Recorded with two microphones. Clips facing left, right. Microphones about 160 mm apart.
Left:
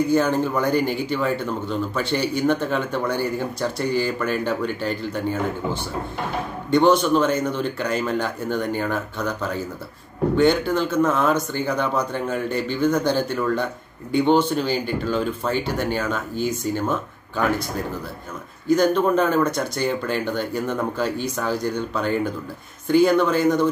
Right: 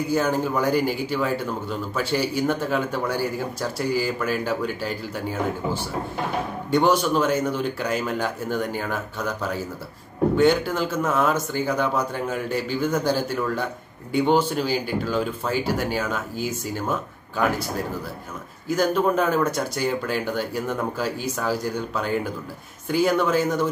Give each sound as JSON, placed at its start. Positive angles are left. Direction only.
{"t": 0.1, "sound": "speech", "side_deg": -5}
{"t": 18.7, "sound": "speech", "side_deg": -5}